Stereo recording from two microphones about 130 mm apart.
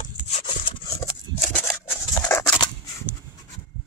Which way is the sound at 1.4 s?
10° left (ahead or behind).